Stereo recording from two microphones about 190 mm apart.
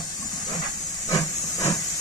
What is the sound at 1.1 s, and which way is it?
Steam, 20° left (ahead or behind).